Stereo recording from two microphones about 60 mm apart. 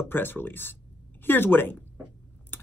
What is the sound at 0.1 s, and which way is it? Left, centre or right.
A woman's voice, left.